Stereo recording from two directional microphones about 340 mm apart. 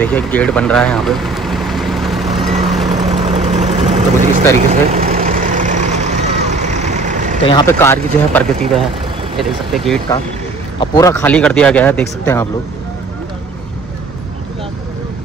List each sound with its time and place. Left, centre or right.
0.0 s vehicle: centre
2.9 s vehicle: centre
7.4 s speech: centre